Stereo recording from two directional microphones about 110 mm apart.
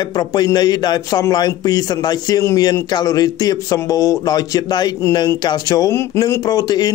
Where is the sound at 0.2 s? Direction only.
40° left (ahead or behind).